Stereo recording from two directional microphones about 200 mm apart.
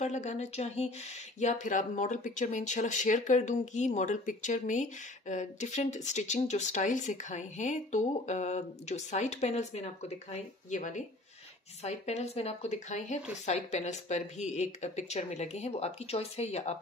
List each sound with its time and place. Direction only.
0.0 s speech: 35° left (ahead or behind)